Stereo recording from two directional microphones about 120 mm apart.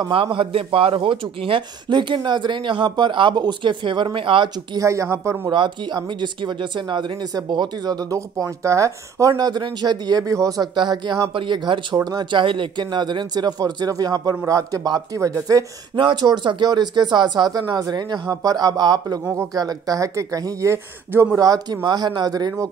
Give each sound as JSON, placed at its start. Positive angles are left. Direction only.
{"t": 0.1, "sound": "speech", "side_deg": -45}
{"t": 4.7, "sound": "speech", "side_deg": -25}
{"t": 5.5, "sound": "speech", "side_deg": -40}
{"t": 14.3, "sound": "speech", "side_deg": -20}
{"t": 21.4, "sound": "speech", "side_deg": -30}